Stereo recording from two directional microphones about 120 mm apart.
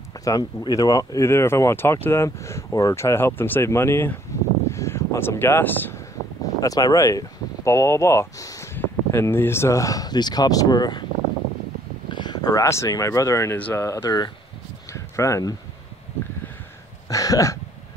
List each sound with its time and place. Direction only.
0.2 s speech: 30° left (ahead or behind); by 5.9 s 15° left (ahead or behind)
6.6 s speech: 30° left (ahead or behind)
12.1 s speech: 40° left (ahead or behind)
13.6 s speech: 15° left (ahead or behind)
13.8 s speech: 30° left (ahead or behind)
14.9 s a sound: 25° left (ahead or behind)
17.1 s speech: 30° left (ahead or behind)